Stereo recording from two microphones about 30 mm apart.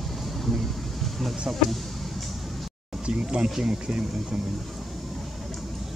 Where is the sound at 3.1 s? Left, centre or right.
Right.